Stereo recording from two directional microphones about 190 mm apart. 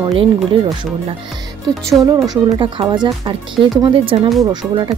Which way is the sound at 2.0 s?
20° right (ahead or behind).